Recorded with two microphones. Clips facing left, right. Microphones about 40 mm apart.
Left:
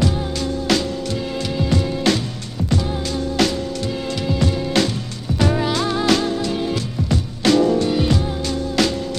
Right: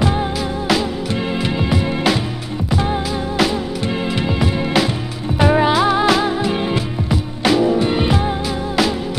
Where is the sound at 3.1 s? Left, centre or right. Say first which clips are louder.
Right 2 dB; centre.